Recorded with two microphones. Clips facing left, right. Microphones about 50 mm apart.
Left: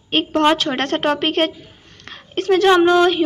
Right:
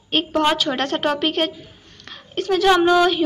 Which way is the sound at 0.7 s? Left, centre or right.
Left.